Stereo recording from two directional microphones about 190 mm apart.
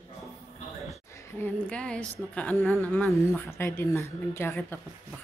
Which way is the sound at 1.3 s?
10° left (ahead or behind).